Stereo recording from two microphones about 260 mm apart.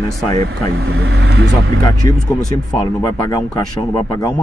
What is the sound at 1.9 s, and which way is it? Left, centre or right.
Speech, centre.